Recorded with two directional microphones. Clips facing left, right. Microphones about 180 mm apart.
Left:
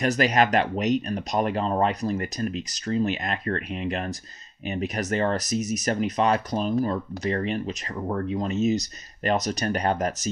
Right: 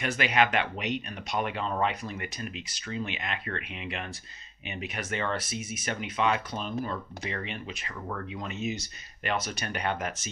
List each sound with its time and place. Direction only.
0.0 s speech: 40° left (ahead or behind)